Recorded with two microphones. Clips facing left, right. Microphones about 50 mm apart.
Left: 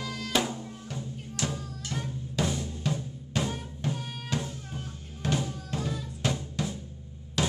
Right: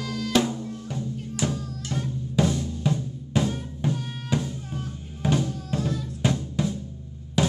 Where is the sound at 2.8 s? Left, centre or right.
Centre.